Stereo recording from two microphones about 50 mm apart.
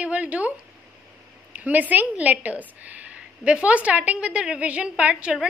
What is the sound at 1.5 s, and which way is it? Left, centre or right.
A woman's voice, right.